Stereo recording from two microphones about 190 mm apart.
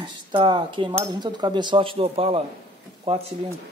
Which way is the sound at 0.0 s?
25° right (ahead or behind).